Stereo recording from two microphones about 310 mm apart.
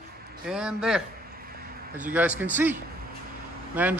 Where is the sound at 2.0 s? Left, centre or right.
Centre.